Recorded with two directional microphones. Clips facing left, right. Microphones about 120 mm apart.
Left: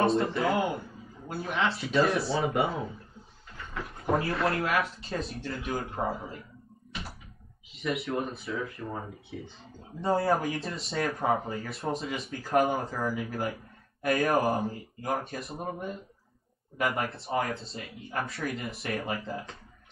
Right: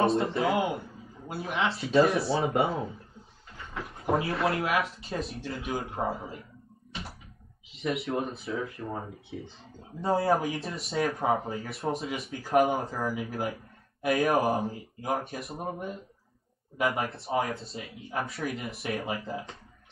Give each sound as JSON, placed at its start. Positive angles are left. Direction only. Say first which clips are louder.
{"t": 0.0, "sound": "a man's voice", "louder": "even", "side_deg": 0}
{"t": 1.8, "sound": "speech", "louder": "right 5 dB", "side_deg": -30}
{"t": 4.0, "sound": "speech", "louder": "even", "side_deg": 0}
{"t": 8.1, "sound": "speech", "louder": "right 1 dB", "side_deg": -30}
{"t": 9.9, "sound": "speech", "louder": "right 1 dB", "side_deg": -5}
{"t": 11.1, "sound": "speech", "louder": "even", "side_deg": -15}
{"t": 11.6, "sound": "speech", "louder": "right 1 dB", "side_deg": 0}
{"t": 15.6, "sound": "speech", "louder": "even", "side_deg": -15}
{"t": 16.9, "sound": "speech", "louder": "right 1 dB", "side_deg": 0}